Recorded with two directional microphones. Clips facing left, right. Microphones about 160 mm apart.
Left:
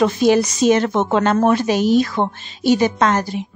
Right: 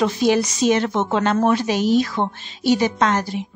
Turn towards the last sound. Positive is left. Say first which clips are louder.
# left 2 dB
turn(degrees=50)  # may be behind; listen again after turning